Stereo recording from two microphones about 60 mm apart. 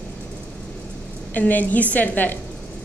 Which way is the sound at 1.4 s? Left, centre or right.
Left.